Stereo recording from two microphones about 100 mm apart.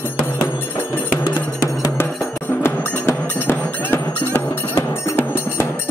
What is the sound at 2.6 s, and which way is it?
Cowbell, 25° left (ahead or behind).